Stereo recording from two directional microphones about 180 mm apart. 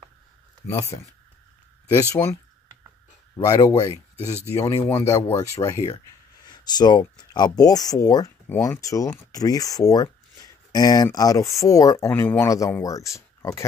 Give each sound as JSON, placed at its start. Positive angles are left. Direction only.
{"t": 0.7, "sound": "speech", "side_deg": 15}